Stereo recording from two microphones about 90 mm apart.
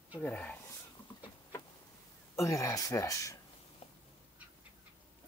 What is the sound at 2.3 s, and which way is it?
Speech, 35° left (ahead or behind).